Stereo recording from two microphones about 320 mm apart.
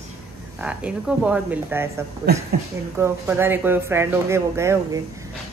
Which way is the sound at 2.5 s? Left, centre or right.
Right.